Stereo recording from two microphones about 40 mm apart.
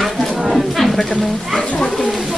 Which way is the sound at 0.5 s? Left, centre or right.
Centre.